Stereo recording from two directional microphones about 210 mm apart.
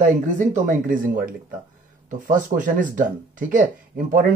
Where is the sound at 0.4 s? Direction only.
35° right (ahead or behind).